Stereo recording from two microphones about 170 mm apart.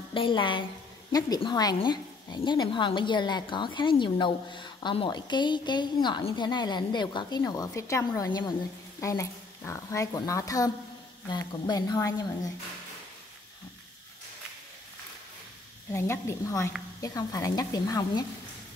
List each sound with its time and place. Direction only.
0.1 s speech: 30° left (ahead or behind)
15.9 s speech: 15° left (ahead or behind)